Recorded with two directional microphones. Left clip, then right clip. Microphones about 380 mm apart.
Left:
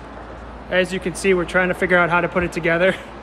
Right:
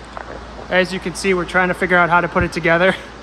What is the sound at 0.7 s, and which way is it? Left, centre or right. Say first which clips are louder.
Speech: right 2 dB; centre.